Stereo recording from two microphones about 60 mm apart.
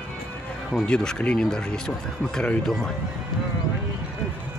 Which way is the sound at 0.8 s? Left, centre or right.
Centre.